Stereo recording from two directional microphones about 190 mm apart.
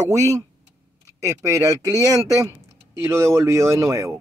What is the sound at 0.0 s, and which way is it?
Speech, 15° right (ahead or behind).